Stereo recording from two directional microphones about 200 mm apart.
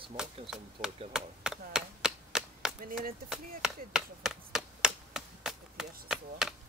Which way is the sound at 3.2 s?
Centre (ahead or behind).